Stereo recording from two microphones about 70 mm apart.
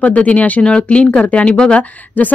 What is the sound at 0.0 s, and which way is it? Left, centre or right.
Speech, centre.